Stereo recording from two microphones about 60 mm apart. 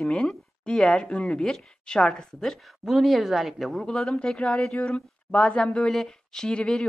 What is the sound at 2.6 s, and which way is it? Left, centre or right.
Speech, centre.